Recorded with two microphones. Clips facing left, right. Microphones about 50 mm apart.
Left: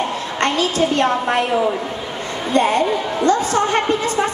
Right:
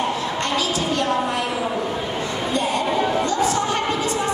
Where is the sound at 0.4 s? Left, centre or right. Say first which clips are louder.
Left 9 dB; left.